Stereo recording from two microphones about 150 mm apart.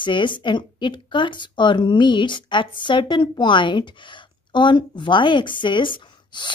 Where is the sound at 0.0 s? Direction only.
30° left (ahead or behind).